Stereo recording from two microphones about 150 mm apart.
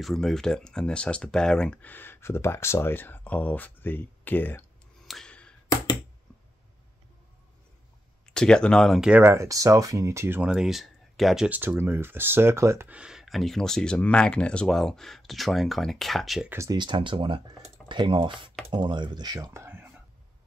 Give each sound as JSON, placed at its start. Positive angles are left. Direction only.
{"t": 0.0, "sound": "speech", "side_deg": 5}
{"t": 5.0, "sound": "a sound", "side_deg": 5}
{"t": 8.3, "sound": "speech", "side_deg": 5}
{"t": 9.1, "sound": "speech", "side_deg": -15}
{"t": 16.4, "sound": "speech", "side_deg": -20}
{"t": 16.7, "sound": "speech", "side_deg": -30}